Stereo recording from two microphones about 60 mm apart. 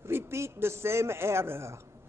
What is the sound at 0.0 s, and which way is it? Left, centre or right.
A man's voice, right.